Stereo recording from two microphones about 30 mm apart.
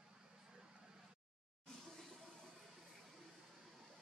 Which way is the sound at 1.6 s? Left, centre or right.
Centre.